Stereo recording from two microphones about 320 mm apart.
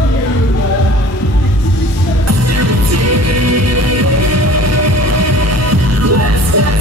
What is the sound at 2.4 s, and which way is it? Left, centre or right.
Music, right.